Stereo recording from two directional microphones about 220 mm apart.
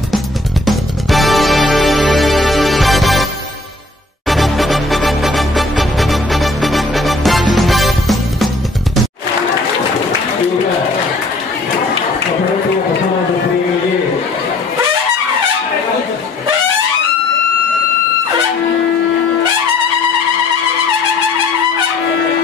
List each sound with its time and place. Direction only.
0.7 s music: centre (ahead or behind)
4.3 s music: centre (ahead or behind)